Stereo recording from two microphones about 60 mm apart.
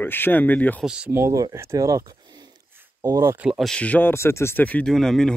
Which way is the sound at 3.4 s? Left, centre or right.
Right.